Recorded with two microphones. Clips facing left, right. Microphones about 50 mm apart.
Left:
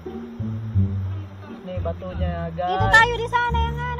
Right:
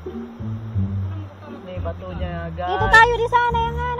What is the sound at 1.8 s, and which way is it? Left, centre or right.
Speech, right.